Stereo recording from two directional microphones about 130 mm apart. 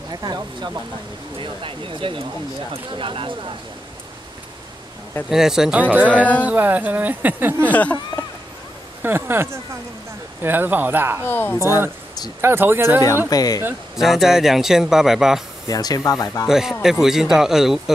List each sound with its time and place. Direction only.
0.1 s speech: 35° right (ahead or behind)
5.3 s speech: 5° right (ahead or behind)
7.7 s speech: 10° left (ahead or behind)
9.0 s speech: 15° right (ahead or behind)
11.2 s speech: 15° left (ahead or behind)
12.4 s speech: 15° right (ahead or behind)
13.3 s speech: 30° left (ahead or behind)
13.9 s a man's voice: centre (ahead or behind)
15.6 s speech: 30° left (ahead or behind)
16.4 s a man's voice: 5° right (ahead or behind)